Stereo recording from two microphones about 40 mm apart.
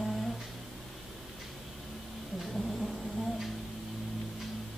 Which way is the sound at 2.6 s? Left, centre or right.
Centre.